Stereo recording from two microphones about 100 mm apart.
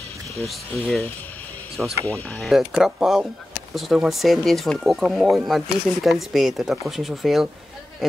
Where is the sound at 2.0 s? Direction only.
15° left (ahead or behind).